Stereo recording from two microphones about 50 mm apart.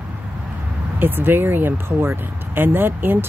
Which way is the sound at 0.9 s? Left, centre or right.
Right.